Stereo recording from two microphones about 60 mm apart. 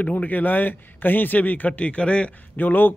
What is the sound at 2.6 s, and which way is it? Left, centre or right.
Speech, left.